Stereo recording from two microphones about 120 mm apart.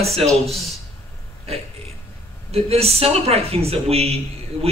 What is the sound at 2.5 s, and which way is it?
A man's voice, 55° right (ahead or behind).